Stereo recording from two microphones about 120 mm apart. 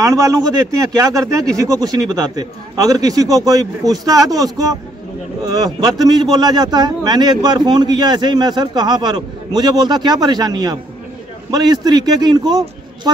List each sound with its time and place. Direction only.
0.0 s a man's voice: 25° right (ahead or behind)